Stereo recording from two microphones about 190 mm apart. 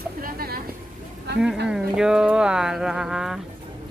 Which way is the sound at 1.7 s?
5° right (ahead or behind).